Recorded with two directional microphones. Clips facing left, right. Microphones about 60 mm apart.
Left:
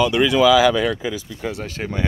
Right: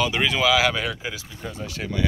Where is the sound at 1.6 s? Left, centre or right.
Left.